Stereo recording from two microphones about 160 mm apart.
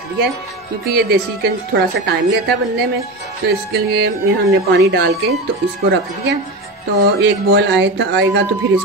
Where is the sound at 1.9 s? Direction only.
90° right.